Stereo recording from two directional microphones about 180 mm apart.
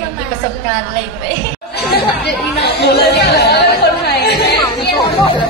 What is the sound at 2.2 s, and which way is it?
Speech, 65° left (ahead or behind).